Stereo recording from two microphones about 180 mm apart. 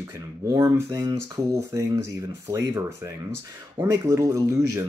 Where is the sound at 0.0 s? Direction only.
15° right (ahead or behind).